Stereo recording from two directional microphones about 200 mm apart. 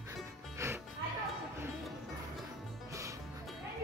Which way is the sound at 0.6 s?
15° right (ahead or behind).